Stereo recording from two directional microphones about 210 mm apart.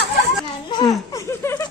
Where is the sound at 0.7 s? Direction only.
20° left (ahead or behind).